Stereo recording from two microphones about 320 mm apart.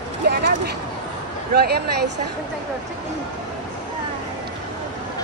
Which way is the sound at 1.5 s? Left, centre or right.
Right.